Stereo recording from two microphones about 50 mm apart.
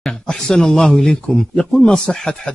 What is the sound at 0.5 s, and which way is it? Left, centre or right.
Speech, centre.